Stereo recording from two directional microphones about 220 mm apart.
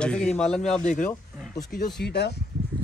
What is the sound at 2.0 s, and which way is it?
Speech, 50° left (ahead or behind).